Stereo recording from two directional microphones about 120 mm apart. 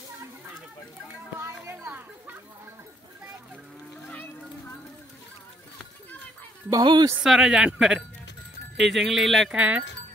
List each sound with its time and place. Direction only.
1.4 s a sound: 20° right (ahead or behind)
6.7 s speech: 35° right (ahead or behind)
7.2 s speech: 5° right (ahead or behind)
9.6 s speech: 10° right (ahead or behind)